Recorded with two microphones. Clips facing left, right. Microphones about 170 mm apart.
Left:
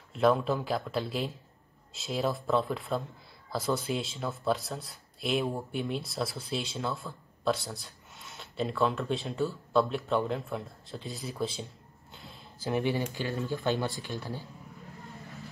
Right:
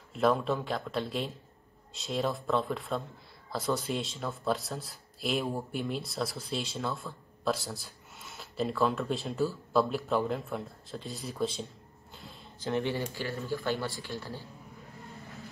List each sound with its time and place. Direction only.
0.1 s speech: centre (ahead or behind); by 14.4 s 15° left (ahead or behind)